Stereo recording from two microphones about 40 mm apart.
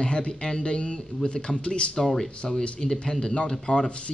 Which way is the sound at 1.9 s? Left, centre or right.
Centre.